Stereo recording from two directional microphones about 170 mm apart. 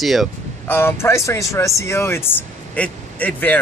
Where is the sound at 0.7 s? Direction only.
15° left (ahead or behind).